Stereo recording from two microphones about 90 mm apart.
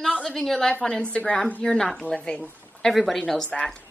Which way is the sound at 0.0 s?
5° left (ahead or behind).